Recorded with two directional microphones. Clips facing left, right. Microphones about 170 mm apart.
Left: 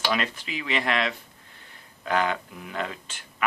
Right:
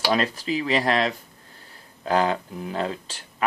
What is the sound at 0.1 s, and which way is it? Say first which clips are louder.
Speech: right 5 dB; 35° right (ahead or behind).